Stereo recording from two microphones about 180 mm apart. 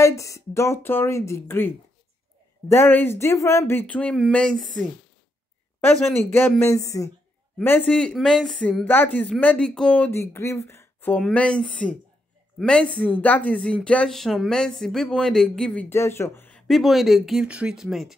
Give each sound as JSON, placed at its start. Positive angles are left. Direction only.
{"t": 0.0, "sound": "speech", "side_deg": 15}
{"t": 5.8, "sound": "speech", "side_deg": 10}